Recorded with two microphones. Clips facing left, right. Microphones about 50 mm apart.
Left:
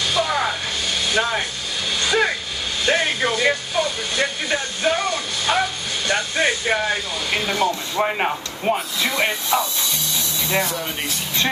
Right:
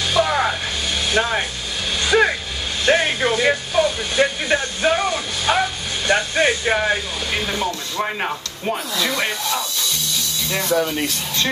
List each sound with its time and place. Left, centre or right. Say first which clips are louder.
0.0 s music: right 2 dB; centre
2.0 s a sound: right 3 dB; centre
8.2 s speech: left 2 dB; centre